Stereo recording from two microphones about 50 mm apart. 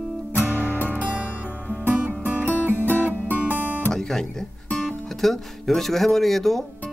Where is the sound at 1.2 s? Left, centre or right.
Left.